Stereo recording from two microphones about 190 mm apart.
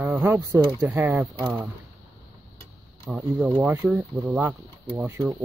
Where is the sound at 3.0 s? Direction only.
5° right (ahead or behind).